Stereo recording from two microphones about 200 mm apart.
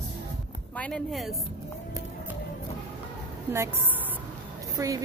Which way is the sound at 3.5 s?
15° right (ahead or behind).